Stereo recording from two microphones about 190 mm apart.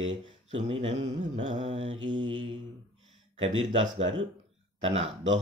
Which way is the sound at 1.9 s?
75° right (ahead or behind).